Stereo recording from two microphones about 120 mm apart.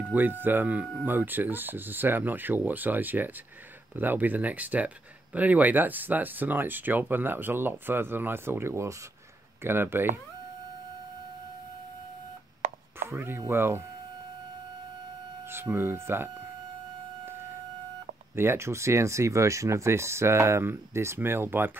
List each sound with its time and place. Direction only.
0.1 s speech: 15° right (ahead or behind)
13.1 s speech: 20° right (ahead or behind)
15.5 s speech: 20° right (ahead or behind)
18.3 s speech: 20° right (ahead or behind)